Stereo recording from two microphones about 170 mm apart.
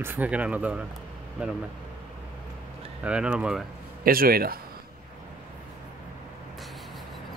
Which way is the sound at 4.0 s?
60° right (ahead or behind).